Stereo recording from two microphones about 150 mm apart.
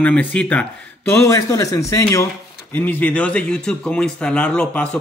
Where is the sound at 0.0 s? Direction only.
10° left (ahead or behind).